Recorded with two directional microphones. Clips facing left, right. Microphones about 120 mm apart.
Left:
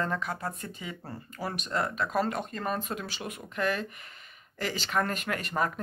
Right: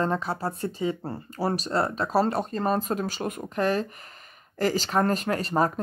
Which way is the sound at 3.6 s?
35° right (ahead or behind).